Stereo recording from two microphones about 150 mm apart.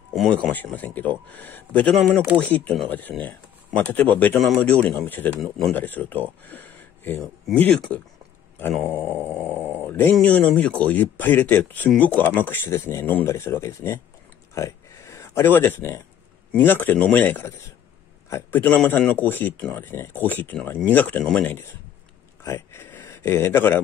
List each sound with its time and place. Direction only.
0.1 s speech: 5° left (ahead or behind)
8.9 s speech: 10° left (ahead or behind)
9.8 s a sound: 10° left (ahead or behind)
10.1 s speech: 5° left (ahead or behind)
14.5 s a sound: 20° left (ahead or behind)
16.5 s speech: 10° left (ahead or behind)